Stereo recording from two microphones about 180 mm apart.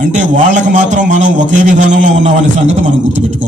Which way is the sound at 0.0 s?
45° right (ahead or behind).